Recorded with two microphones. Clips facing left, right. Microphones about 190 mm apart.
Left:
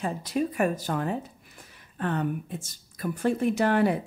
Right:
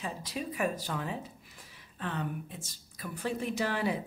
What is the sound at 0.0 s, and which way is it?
Speech, 50° left (ahead or behind).